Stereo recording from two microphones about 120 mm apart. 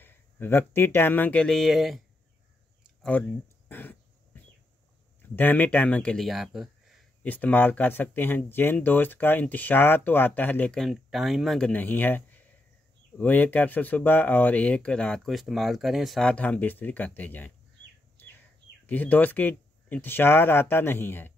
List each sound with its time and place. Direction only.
0.0 s speech: 20° left (ahead or behind); by 2.0 s centre (ahead or behind)
3.0 s speech: 15° left (ahead or behind)
5.3 s speech: 15° left (ahead or behind); by 7.0 s centre (ahead or behind)
7.2 s speech: 15° left (ahead or behind)
10.8 s speech: centre (ahead or behind); by 17.5 s 15° left (ahead or behind)
18.9 s speech: 15° left (ahead or behind)